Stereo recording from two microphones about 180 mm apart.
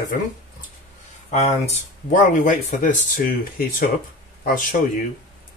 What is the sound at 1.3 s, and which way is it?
Speech, 40° left (ahead or behind).